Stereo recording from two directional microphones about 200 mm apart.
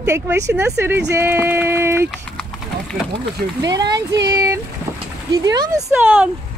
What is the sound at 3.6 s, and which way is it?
Speech, 20° right (ahead or behind).